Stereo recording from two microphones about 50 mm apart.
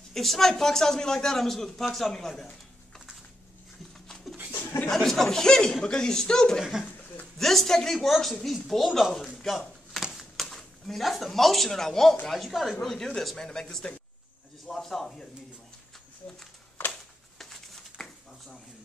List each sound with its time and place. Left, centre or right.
0.1 s a man's voice: centre
4.1 s a sound: centre
4.6 s chuckle: left
4.8 s a man's voice: centre
6.6 s speech: centre
7.3 s a woman's voice: centre
10.1 s a sound: centre
10.5 s a woman's voice: centre
16.9 s a sound: centre